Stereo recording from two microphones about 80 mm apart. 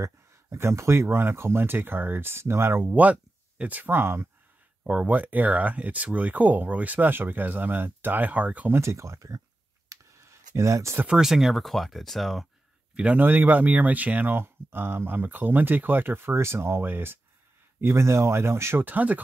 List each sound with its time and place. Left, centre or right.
0.0 s speech: right
4.8 s speech: centre
8.7 s speech: right
9.8 s a sound: right
11.1 s speech: centre
12.9 s speech: centre